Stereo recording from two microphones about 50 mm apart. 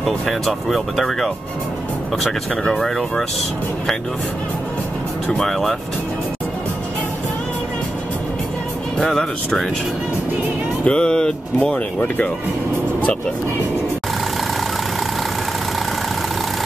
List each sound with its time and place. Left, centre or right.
0.0 s speech: centre
2.5 s speech: centre
5.4 s speech: centre
8.9 s speech: centre
10.9 s speech: centre
11.7 s speech: left